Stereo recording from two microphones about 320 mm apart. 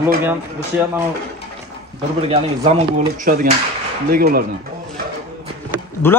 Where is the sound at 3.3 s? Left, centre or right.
Right.